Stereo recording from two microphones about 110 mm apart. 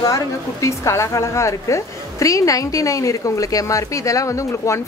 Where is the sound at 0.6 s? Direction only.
25° left (ahead or behind).